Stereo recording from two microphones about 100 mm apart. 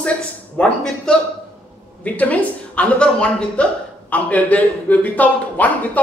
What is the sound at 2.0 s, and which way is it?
A woman's voice, 15° left (ahead or behind).